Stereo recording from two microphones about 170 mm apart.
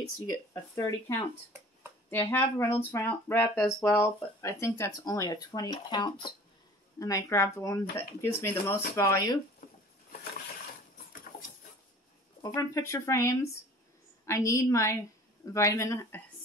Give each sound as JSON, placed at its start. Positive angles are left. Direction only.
{"t": 0.3, "sound": "speech", "side_deg": 20}
{"t": 12.5, "sound": "speech", "side_deg": 15}